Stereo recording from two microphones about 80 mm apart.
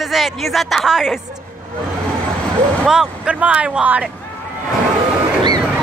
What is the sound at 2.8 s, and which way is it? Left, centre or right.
A man's voice, centre.